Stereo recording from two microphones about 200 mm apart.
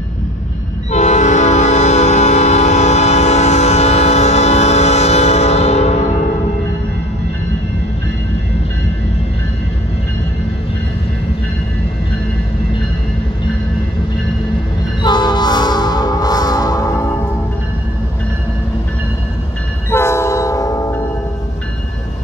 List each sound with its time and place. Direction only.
0.9 s train horn: 35° left (ahead or behind)
15.0 s train: 20° left (ahead or behind)
19.9 s train: 15° left (ahead or behind)